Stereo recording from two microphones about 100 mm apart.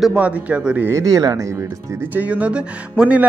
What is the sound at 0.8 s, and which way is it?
Speech, 35° right (ahead or behind).